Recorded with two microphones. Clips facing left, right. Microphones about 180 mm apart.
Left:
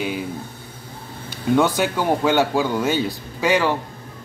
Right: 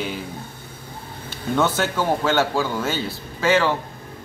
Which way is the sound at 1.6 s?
15° left (ahead or behind).